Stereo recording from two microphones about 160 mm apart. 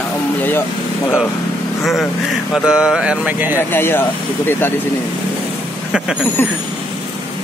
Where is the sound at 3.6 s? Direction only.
15° left (ahead or behind).